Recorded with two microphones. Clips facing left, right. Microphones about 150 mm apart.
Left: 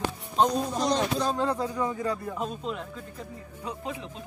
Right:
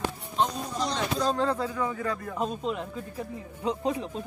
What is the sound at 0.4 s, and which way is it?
Speech, 45° left (ahead or behind).